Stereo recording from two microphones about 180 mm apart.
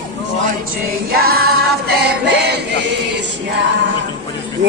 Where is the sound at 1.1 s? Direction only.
60° right (ahead or behind).